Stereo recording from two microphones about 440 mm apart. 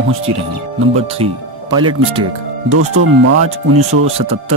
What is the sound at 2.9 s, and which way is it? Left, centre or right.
Speech, right.